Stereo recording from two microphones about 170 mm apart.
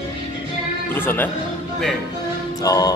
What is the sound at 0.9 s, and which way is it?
Speech, 10° left (ahead or behind).